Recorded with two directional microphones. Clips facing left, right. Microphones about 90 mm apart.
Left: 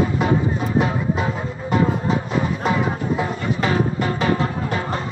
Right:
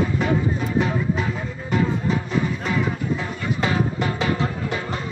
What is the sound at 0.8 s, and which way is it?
Music, 35° left (ahead or behind).